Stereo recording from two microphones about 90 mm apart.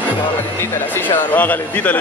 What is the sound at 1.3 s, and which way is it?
Speech, 20° left (ahead or behind).